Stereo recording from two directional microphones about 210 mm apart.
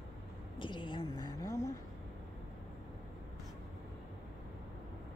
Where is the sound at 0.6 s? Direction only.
25° left (ahead or behind).